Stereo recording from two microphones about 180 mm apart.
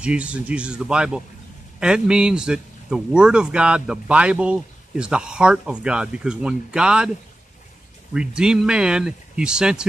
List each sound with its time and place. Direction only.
0.0 s a man's voice: 5° right (ahead or behind)
8.1 s a man's voice: 5° right (ahead or behind)